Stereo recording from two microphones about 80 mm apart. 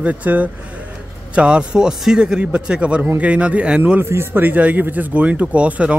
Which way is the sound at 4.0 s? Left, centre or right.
Right.